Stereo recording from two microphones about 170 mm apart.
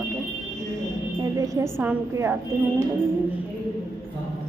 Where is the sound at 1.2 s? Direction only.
20° right (ahead or behind).